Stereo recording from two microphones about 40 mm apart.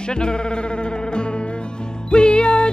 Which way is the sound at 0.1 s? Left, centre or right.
Left.